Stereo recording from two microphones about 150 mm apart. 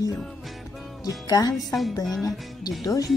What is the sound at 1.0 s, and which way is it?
Music, 25° left (ahead or behind).